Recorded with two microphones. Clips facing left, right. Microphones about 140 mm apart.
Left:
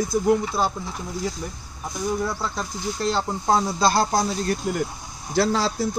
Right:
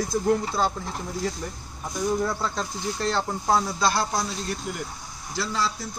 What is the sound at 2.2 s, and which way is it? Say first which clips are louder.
Speech: even; centre (ahead or behind).